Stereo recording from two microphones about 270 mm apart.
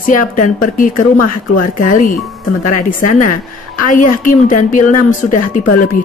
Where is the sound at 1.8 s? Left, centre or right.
Left.